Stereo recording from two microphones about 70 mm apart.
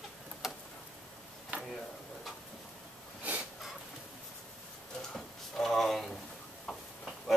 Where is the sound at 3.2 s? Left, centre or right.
Centre.